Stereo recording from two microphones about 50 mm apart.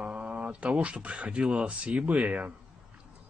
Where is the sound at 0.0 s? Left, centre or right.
Right.